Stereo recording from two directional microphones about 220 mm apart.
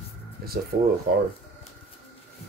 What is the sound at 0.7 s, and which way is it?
Speech, 50° right (ahead or behind).